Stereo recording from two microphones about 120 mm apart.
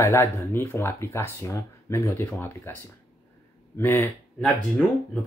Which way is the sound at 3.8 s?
15° left (ahead or behind).